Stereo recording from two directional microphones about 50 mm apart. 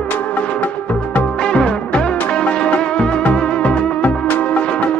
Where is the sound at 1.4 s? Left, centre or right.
Centre.